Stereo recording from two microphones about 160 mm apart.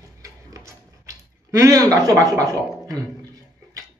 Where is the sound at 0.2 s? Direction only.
20° right (ahead or behind).